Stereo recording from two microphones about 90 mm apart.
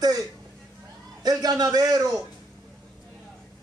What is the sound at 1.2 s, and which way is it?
Speech, 45° right (ahead or behind).